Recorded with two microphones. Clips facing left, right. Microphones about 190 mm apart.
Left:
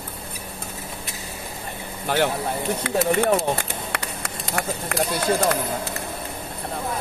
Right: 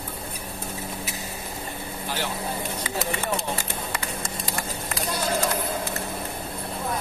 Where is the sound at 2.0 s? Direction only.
60° left (ahead or behind).